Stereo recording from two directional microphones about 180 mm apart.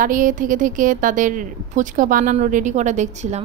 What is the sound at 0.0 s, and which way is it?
A woman's voice, 45° right (ahead or behind).